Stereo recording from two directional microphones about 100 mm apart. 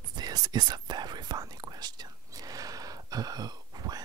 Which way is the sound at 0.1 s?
40° right (ahead or behind).